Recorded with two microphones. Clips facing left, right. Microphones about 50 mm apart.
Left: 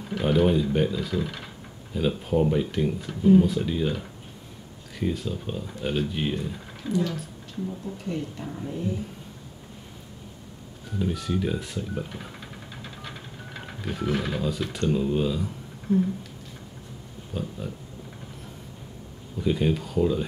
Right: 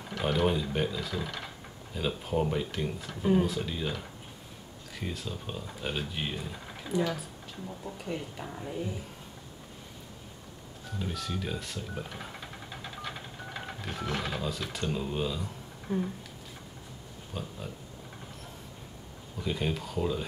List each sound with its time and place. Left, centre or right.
0.1 s speech: centre
3.2 s speech: right
3.4 s speech: centre
6.9 s speech: centre
11.0 s speech: centre
15.9 s a sound: right
17.3 s speech: centre
19.4 s speech: centre